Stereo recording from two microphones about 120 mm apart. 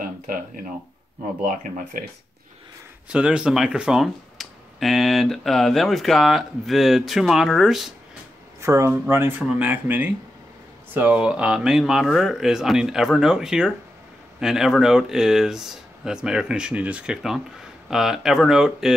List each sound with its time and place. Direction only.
3.1 s speech: 10° right (ahead or behind)
8.5 s speech: 25° right (ahead or behind); by 18.9 s 5° right (ahead or behind)